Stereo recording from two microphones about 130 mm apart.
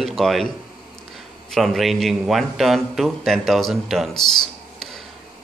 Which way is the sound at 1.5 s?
Centre (ahead or behind).